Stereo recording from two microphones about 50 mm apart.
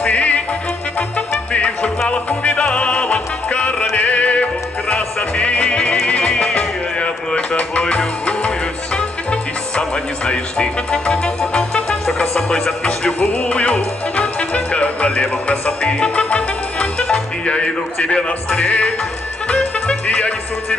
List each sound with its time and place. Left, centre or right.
0.0 s music: left
1.5 s music: left